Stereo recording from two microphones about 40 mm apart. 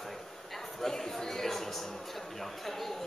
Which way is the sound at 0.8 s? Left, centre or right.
Centre.